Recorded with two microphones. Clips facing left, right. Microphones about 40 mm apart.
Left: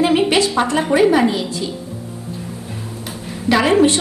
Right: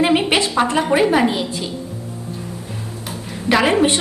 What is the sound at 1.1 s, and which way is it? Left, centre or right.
Speech, centre.